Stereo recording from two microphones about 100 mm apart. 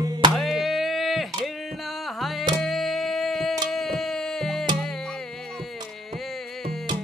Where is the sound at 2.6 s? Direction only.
Centre (ahead or behind).